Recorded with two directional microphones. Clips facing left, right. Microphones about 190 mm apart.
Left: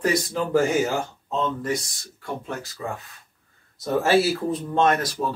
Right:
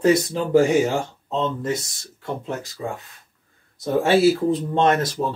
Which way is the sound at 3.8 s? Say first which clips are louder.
Right 3 dB; 25° right (ahead or behind).